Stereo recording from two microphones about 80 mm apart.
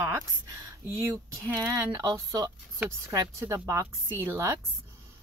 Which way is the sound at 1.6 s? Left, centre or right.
Right.